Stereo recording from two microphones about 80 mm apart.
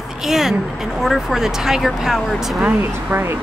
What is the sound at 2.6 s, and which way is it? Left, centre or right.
Speech, right.